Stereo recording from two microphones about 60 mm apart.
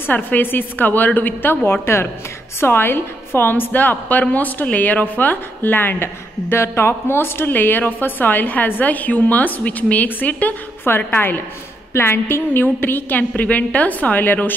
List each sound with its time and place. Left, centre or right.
0.0 s a woman's voice: left
1.7 s a woman's voice: left
6.5 s a woman's voice: left